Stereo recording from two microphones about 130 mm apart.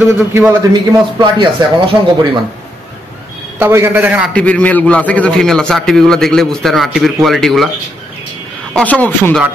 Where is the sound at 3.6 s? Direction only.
15° right (ahead or behind).